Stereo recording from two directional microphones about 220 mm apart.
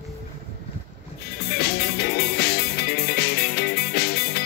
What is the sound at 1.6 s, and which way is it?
Music, 45° left (ahead or behind).